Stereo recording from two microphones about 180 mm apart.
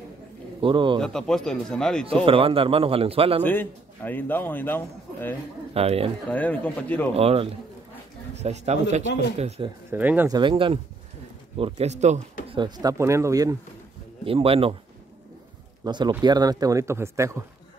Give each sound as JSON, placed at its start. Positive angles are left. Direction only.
{"t": 0.6, "sound": "speech", "side_deg": -25}
{"t": 0.9, "sound": "a man's voice", "side_deg": 5}
{"t": 2.2, "sound": "speech", "side_deg": -30}
{"t": 3.4, "sound": "a man's voice", "side_deg": 10}
{"t": 5.7, "sound": "speech", "side_deg": -35}
{"t": 6.3, "sound": "a man's voice", "side_deg": 10}
{"t": 7.2, "sound": "speech", "side_deg": -35}
{"t": 9.8, "sound": "speech", "side_deg": -10}
{"t": 10.3, "sound": "speech", "side_deg": -30}
{"t": 12.4, "sound": "speech", "side_deg": -25}
{"t": 14.2, "sound": "speech", "side_deg": -30}
{"t": 15.8, "sound": "speech", "side_deg": -25}